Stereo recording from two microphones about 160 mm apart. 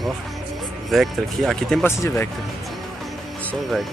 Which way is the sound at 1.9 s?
15° left (ahead or behind).